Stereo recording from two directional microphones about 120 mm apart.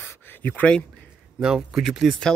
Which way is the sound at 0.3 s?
15° left (ahead or behind).